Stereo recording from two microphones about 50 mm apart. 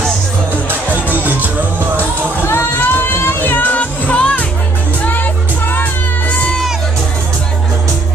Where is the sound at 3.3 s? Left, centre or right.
Left.